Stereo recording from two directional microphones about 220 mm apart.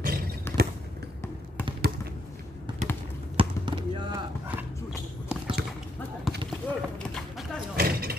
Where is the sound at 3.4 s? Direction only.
20° right (ahead or behind).